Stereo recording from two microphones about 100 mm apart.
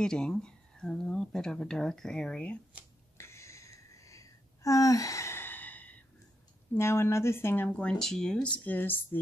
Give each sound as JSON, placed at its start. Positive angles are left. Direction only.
{"t": 0.0, "sound": "speech", "side_deg": 5}
{"t": 3.2, "sound": "a sound", "side_deg": 25}
{"t": 6.7, "sound": "speech", "side_deg": 25}